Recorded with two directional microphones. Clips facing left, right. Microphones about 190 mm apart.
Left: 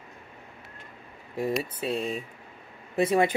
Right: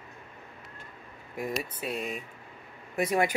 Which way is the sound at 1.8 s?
30° left (ahead or behind).